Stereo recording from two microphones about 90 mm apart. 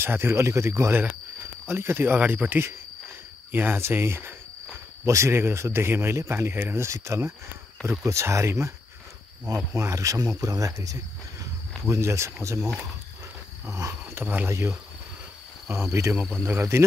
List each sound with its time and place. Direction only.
0.0 s speech: 25° right (ahead or behind)
9.8 s speech: 35° right (ahead or behind)
14.1 s speech: 20° right (ahead or behind)
15.9 s speech: 35° right (ahead or behind)